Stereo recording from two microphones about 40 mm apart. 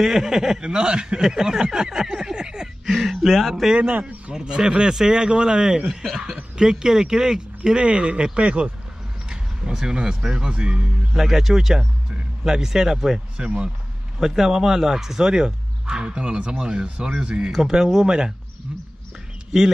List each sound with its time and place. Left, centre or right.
0.0 s speech: centre
0.6 s speech: right
1.2 s a sound: centre
3.3 s speech: centre
4.3 s speech: right
5.9 s speech: centre
6.6 s speech: centre
9.3 s speech: centre
11.1 s speech: centre
13.4 s speech: right
14.2 s speech: centre